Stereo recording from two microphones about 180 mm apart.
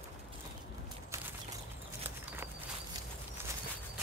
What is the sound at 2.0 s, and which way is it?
Horse, 10° right (ahead or behind).